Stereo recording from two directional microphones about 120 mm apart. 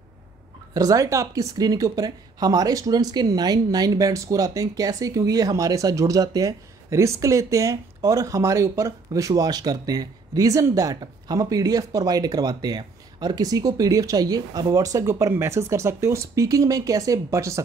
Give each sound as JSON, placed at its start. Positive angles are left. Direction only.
{"t": 0.7, "sound": "speech", "side_deg": -30}